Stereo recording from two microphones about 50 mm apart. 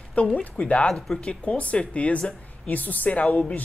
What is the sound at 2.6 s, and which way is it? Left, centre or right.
Speech, left.